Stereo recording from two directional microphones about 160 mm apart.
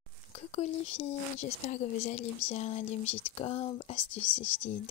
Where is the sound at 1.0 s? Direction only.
45° left (ahead or behind).